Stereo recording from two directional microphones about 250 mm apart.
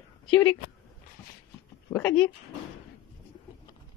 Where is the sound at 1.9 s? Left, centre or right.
Centre.